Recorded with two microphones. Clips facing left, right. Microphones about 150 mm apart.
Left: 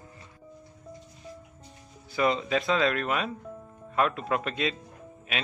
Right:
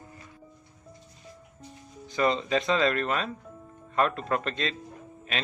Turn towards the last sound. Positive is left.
turn(degrees=5)  # may be behind; listen again after turning